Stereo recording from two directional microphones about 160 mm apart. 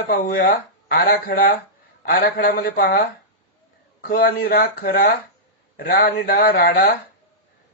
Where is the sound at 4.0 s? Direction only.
65° left (ahead or behind).